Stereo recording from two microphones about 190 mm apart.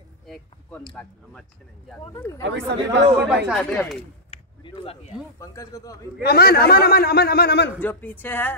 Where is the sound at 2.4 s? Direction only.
65° right (ahead or behind).